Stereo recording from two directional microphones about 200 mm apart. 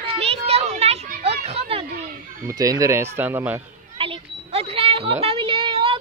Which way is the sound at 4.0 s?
30° right (ahead or behind).